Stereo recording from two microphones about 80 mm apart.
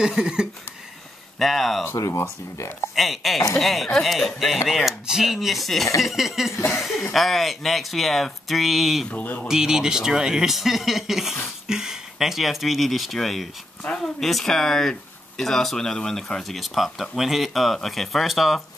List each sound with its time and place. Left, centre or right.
0.0 s a sound: centre
1.4 s speech: centre
1.9 s speech: left
3.0 s speech: centre
9.1 s speech: centre
9.5 s speech: centre